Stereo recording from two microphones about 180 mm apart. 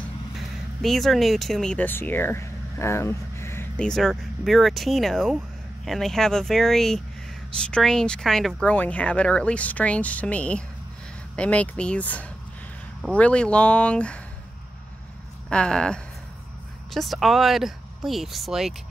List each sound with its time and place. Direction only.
0.8 s speech: centre (ahead or behind)
15.5 s speech: 5° left (ahead or behind)